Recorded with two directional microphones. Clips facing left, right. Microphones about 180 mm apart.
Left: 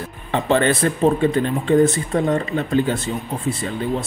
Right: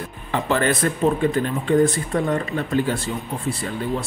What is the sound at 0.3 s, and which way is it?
Speech, 25° left (ahead or behind).